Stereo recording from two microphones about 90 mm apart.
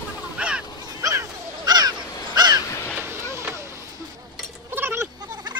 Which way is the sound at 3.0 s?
30° right (ahead or behind).